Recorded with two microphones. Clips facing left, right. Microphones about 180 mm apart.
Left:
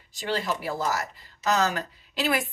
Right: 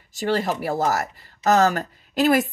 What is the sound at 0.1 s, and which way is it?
Speech, 45° right (ahead or behind).